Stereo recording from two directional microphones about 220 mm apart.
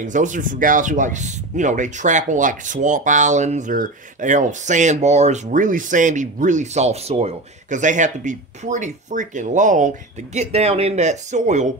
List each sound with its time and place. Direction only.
0.0 s speech: 35° right (ahead or behind)